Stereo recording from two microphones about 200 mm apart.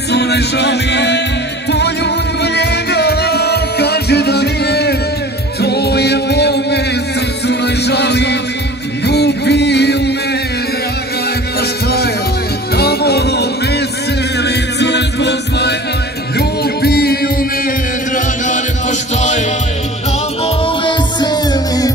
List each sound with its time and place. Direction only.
0.1 s music: 55° left (ahead or behind)
12.7 s music: 55° left (ahead or behind)
18.1 s music: 40° left (ahead or behind)
20.4 s music: 25° left (ahead or behind)